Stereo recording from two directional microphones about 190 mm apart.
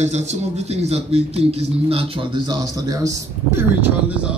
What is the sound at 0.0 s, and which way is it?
Speech, 35° right (ahead or behind).